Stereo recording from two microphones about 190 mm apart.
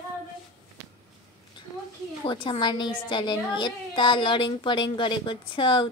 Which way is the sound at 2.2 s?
25° left (ahead or behind).